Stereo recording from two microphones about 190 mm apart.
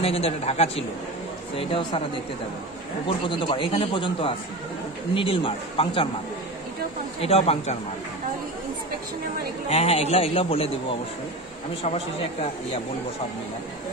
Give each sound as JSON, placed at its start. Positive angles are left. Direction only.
{"t": 0.0, "sound": "a man's voice", "side_deg": 30}
{"t": 3.3, "sound": "a man's voice", "side_deg": 25}
{"t": 7.2, "sound": "speech", "side_deg": 35}
{"t": 9.7, "sound": "speech", "side_deg": 30}
{"t": 11.8, "sound": "speech", "side_deg": 35}